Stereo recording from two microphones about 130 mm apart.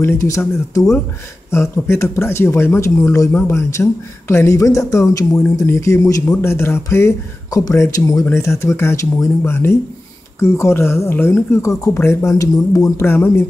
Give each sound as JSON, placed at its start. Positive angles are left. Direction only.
{"t": 0.0, "sound": "speech", "side_deg": 20}